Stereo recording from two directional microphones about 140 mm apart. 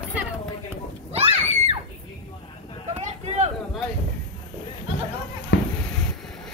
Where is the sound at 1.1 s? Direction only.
50° right (ahead or behind).